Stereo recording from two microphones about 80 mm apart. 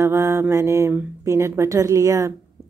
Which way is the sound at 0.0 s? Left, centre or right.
Right.